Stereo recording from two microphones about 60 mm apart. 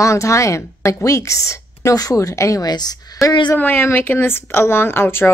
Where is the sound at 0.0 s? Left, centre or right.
Left.